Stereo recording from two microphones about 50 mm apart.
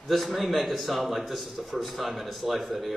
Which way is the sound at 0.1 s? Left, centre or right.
Centre.